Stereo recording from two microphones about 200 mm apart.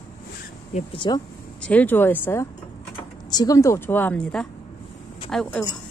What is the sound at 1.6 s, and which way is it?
A woman's voice, 10° left (ahead or behind).